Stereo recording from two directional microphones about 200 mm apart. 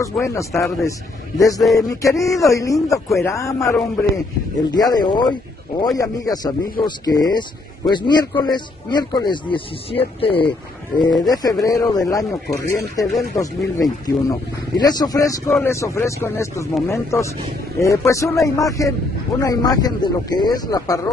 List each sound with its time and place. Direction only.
0.0 s speech: 15° left (ahead or behind)